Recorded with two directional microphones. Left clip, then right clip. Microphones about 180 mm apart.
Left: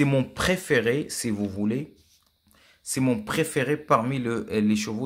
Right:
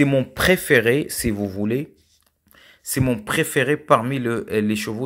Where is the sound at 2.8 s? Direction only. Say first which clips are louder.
Right 3 dB; 25° right (ahead or behind).